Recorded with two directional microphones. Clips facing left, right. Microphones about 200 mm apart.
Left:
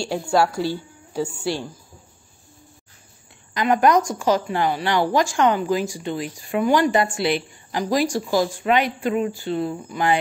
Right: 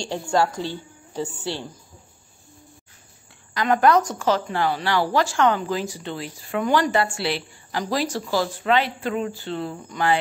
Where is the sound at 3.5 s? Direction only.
15° left (ahead or behind).